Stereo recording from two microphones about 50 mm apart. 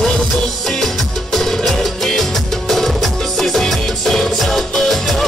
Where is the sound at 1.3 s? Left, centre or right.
Centre.